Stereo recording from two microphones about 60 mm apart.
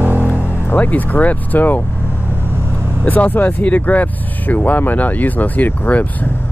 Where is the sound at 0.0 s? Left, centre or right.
Right.